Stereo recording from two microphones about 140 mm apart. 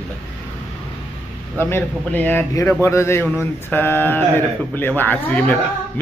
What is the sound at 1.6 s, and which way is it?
A man's voice, 15° left (ahead or behind).